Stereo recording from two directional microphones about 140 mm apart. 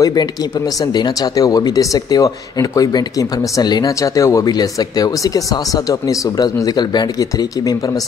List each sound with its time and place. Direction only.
0.0 s speech: 30° left (ahead or behind)